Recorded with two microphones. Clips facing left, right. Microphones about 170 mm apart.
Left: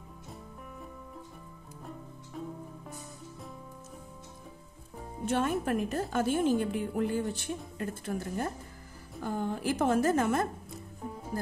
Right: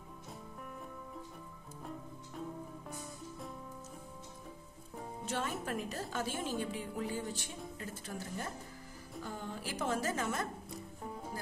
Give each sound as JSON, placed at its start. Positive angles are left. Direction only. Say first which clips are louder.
{"t": 5.2, "sound": "a woman's voice", "louder": "left 10 dB", "side_deg": 55}